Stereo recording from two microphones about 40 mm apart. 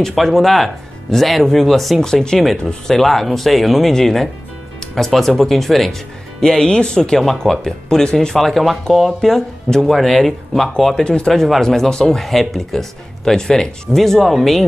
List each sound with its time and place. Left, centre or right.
0.1 s speech: centre
6.4 s speech: centre
7.3 s speech: centre
8.0 s speech: centre
8.4 s speech: centre
11.1 s speech: centre
11.6 s speech: centre
12.2 s speech: centre